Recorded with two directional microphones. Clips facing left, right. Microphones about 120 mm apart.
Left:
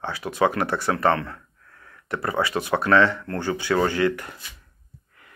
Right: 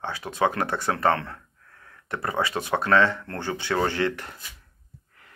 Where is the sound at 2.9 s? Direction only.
20° right (ahead or behind).